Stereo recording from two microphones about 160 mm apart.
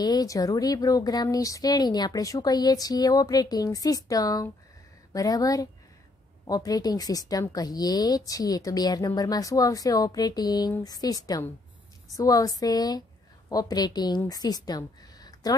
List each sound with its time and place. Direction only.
0.0 s a woman's voice: 25° left (ahead or behind)